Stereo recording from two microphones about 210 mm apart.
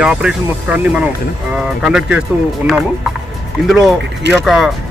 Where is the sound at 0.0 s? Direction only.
5° right (ahead or behind).